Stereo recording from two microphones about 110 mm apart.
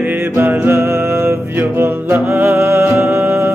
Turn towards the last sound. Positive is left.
turn(degrees=-20)  # may be behind; listen again after turning